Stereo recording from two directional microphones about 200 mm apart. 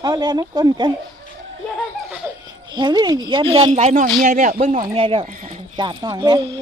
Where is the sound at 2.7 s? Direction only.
20° right (ahead or behind); by 4.8 s 40° right (ahead or behind).